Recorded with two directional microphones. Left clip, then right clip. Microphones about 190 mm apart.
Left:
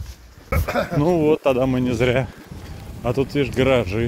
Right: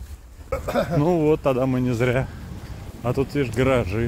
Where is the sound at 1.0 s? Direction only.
Centre (ahead or behind).